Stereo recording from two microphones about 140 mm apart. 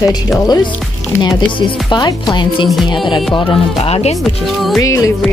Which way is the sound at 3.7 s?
45° left (ahead or behind).